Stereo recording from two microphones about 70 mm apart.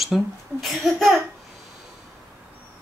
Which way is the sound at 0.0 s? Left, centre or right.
Centre.